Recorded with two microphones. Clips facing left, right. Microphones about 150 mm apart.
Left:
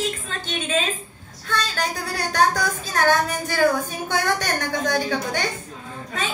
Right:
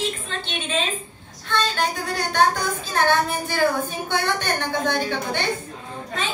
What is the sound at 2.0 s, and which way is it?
Speech, 40° left (ahead or behind).